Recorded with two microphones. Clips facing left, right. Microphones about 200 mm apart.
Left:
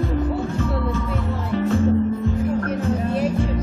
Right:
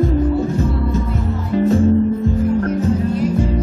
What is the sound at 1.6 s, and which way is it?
Music, 40° right (ahead or behind).